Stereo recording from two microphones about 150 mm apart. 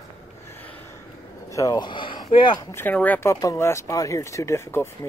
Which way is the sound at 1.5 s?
25° left (ahead or behind).